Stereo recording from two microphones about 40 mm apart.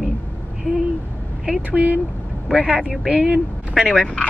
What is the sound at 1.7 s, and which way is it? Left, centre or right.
Speech, right.